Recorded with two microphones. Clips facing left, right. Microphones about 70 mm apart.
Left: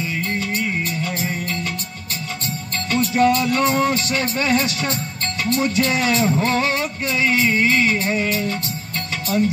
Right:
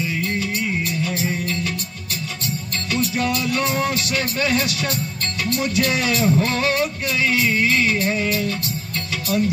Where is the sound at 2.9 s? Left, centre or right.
Left.